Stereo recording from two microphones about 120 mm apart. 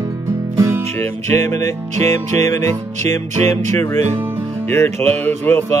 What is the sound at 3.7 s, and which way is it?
Music, 25° left (ahead or behind).